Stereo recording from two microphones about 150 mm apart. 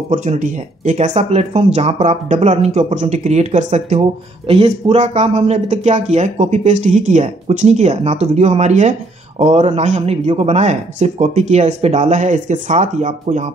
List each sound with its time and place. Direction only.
0.1 s speech: 55° right (ahead or behind)